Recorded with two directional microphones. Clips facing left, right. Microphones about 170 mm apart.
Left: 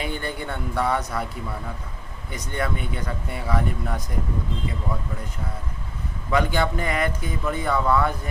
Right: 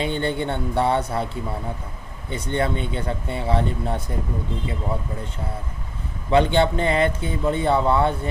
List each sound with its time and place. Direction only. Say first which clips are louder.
0.0 s speech: right 6 dB; 25° right (ahead or behind)
6.3 s speech: right 5 dB; 30° right (ahead or behind)